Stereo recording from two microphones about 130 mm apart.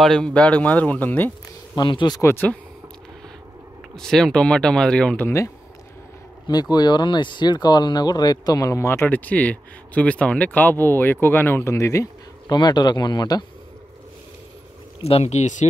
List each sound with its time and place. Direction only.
0.0 s speech: 5° left (ahead or behind)
1.8 s speech: 35° left (ahead or behind)
2.2 s speech: 10° left (ahead or behind)
3.9 s speech: 5° left (ahead or behind)
6.4 s speech: 30° left (ahead or behind)
15.0 s speech: 55° left (ahead or behind)